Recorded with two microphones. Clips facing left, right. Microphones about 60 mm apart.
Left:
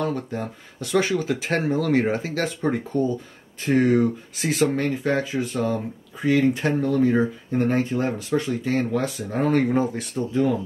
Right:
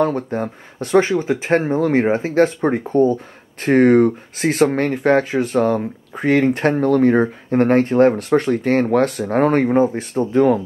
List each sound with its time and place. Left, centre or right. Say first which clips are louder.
0.0 s speech: right 7 dB; right
9.6 s speech: right 6 dB; right
10.3 s speech: right 7 dB; right